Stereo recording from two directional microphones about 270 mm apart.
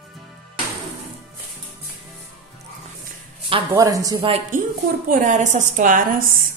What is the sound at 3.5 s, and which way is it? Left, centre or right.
A woman's voice, centre.